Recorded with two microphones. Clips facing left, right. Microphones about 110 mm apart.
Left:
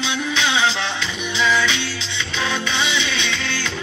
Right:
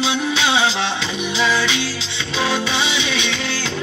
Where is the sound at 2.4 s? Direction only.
10° right (ahead or behind).